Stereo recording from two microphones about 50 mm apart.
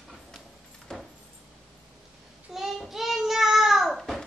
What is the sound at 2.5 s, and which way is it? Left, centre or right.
Child singing, centre.